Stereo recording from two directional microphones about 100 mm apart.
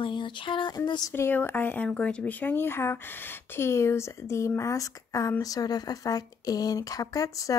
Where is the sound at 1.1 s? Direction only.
25° left (ahead or behind).